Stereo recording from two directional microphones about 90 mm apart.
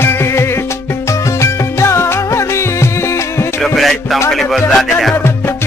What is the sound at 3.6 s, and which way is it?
Music, centre (ahead or behind).